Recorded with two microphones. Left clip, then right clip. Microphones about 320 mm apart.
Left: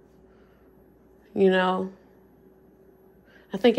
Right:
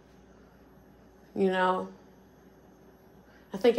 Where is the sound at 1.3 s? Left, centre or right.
Left.